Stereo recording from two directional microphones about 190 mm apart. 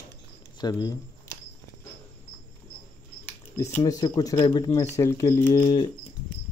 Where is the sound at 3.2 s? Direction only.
15° left (ahead or behind).